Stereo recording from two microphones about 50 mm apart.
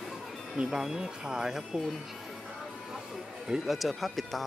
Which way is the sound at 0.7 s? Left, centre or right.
Centre.